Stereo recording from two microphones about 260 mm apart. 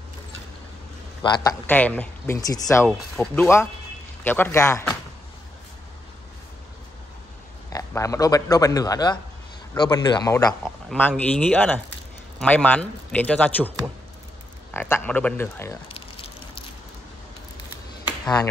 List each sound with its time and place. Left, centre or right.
1.2 s speech: centre
7.7 s speech: centre
10.6 s a man's voice: centre
18.0 s a sound: centre